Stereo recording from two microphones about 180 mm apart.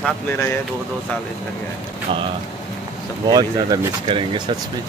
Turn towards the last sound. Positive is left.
turn(degrees=-30)  # may be behind; listen again after turning